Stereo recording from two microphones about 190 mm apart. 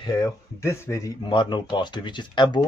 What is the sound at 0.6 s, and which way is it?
Speech, 15° left (ahead or behind).